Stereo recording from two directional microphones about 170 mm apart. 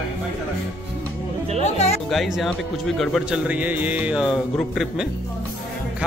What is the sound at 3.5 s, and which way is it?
Music, 10° right (ahead or behind).